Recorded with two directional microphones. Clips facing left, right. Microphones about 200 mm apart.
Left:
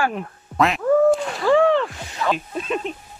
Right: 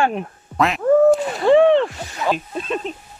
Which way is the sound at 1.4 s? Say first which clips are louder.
Right 4 dB; 25° right (ahead or behind).